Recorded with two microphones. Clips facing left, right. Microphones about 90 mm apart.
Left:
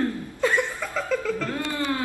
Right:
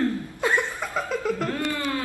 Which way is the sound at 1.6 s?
20° left (ahead or behind).